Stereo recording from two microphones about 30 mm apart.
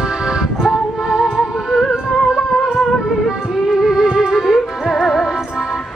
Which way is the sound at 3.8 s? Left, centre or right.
Centre.